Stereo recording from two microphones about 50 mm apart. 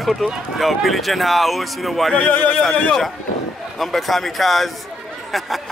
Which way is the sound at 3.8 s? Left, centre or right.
Centre.